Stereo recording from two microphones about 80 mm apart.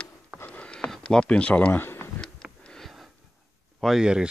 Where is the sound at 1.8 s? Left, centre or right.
Left.